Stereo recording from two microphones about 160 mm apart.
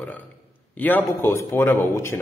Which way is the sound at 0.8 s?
15° left (ahead or behind).